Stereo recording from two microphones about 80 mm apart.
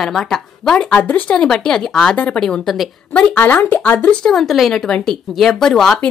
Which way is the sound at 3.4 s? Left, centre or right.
Left.